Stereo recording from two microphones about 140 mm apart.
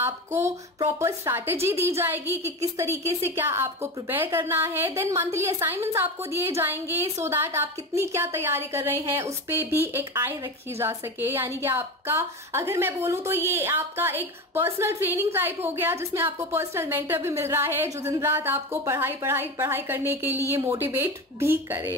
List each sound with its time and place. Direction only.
0.0 s a woman's voice: 20° right (ahead or behind)